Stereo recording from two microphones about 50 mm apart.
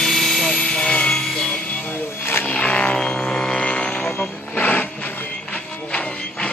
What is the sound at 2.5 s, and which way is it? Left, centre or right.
Music, left.